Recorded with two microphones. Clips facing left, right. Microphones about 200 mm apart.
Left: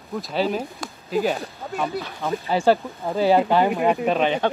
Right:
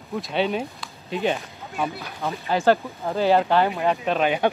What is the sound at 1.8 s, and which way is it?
Speech, centre (ahead or behind).